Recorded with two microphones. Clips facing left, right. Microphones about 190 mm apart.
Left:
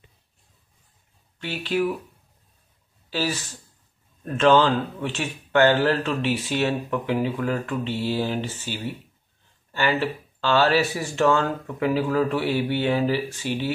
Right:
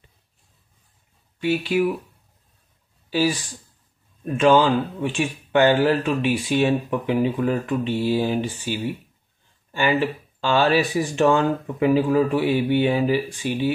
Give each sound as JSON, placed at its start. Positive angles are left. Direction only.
{"t": 1.4, "sound": "speech", "side_deg": -10}
{"t": 3.1, "sound": "speech", "side_deg": -15}